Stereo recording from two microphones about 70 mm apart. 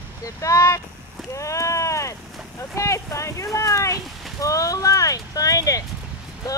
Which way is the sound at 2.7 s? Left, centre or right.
Left.